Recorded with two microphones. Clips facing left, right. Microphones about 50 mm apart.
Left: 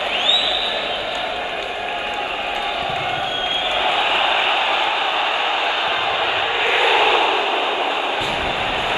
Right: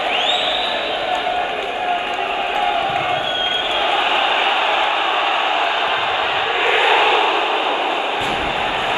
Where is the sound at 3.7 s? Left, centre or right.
Right.